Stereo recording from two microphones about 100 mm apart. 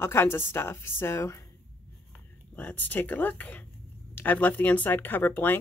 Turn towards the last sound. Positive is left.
turn(degrees=20)  # may be behind; listen again after turning